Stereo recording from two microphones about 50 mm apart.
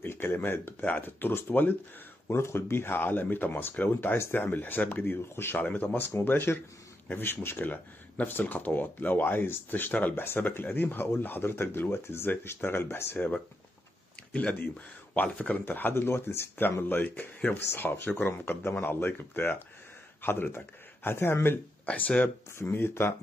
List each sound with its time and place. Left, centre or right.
0.0 s speech: left
0.8 s speech: left
2.3 s speech: left
5.3 s speech: left
5.6 s speech: left
6.2 s speech: left
10.2 s speech: left
12.3 s speech: left
14.3 s speech: left
15.6 s speech: left
16.9 s speech: left
21.9 s speech: left
22.6 s speech: left